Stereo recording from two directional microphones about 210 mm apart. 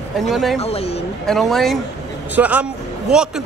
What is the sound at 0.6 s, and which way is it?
Speech, 30° left (ahead or behind).